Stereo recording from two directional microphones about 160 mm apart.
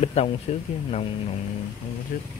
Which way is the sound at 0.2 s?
40° left (ahead or behind).